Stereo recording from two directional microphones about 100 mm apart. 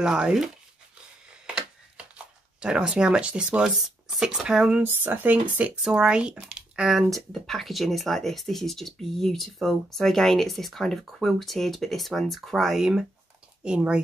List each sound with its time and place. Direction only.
0.0 s speech: 5° right (ahead or behind)
2.6 s speech: 10° right (ahead or behind)